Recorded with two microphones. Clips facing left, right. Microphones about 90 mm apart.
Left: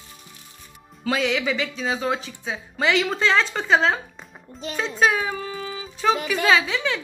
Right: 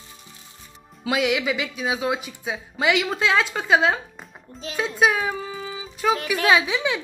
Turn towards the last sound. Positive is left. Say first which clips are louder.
# right 1 dB
turn(degrees=-15)  # may be behind; listen again after turning